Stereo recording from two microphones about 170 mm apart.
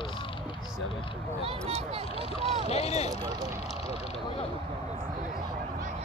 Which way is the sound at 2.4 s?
40° right (ahead or behind).